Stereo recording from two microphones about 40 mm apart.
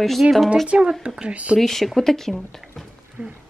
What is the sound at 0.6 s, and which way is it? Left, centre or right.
Speech, right.